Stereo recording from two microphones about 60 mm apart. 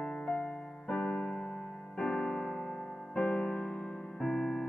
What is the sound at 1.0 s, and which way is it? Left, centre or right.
Keyboard, left.